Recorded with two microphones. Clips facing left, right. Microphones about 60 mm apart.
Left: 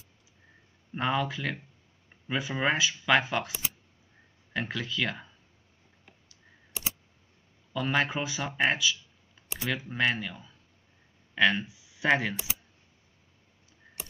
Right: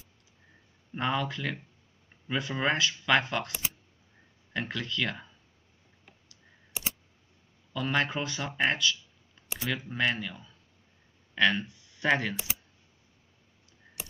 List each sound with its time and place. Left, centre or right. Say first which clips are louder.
0.9 s speech: left 1 dB; centre
7.7 s speech: left 1 dB; centre